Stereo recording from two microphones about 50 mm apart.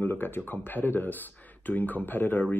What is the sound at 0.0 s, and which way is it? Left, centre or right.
Speech, left.